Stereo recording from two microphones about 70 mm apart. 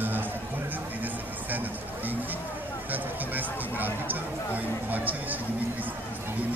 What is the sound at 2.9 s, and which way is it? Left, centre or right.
Speech, right.